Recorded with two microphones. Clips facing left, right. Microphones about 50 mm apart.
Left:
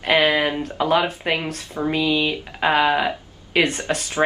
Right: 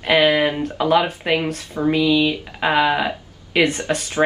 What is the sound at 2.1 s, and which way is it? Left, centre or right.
Speech, centre.